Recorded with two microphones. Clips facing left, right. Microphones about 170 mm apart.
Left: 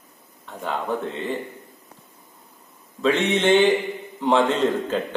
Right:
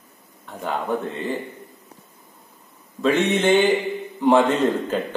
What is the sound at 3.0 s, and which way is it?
Speech, 5° right (ahead or behind).